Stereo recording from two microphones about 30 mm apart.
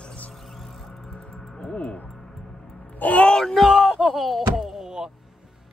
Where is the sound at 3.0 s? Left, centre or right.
Left.